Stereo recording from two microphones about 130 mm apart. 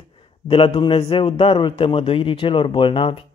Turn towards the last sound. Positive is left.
turn(degrees=40)  # may be behind; listen again after turning